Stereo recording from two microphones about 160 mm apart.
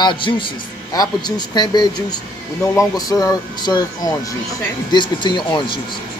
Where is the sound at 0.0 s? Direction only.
30° left (ahead or behind).